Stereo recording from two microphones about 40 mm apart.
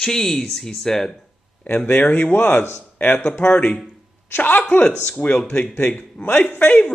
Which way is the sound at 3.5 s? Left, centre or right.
Left.